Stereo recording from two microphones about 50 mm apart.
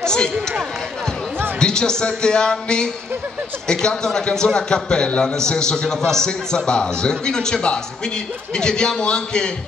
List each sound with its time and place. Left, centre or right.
0.0 s speech: centre
1.6 s a man's voice: centre